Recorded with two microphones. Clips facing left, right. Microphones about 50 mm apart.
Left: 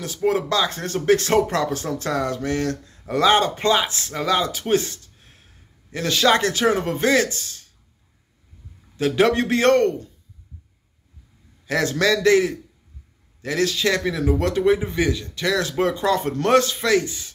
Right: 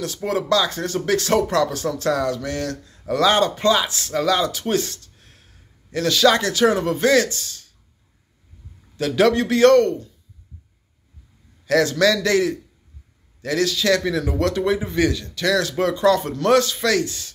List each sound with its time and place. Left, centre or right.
0.0 s speech: centre
8.9 s speech: left
11.6 s speech: left